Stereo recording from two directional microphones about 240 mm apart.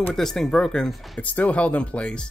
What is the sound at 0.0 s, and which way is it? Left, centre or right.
Speech, centre.